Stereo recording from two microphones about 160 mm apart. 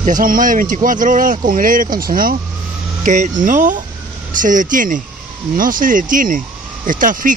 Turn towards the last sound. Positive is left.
turn(degrees=-55)  # may be behind; listen again after turning